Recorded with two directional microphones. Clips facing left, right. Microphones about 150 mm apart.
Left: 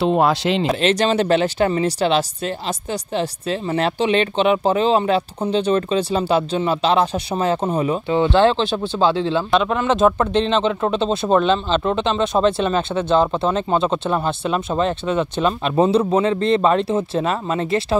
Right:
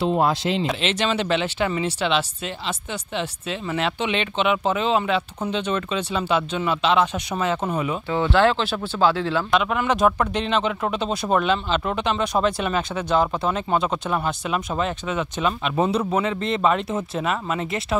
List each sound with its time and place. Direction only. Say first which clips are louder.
0.0 s speech: left 4 dB; 75° left (ahead or behind)
0.7 s speech: left 6 dB; 45° left (ahead or behind)
8.1 s speech: left 3 dB; 20° left (ahead or behind)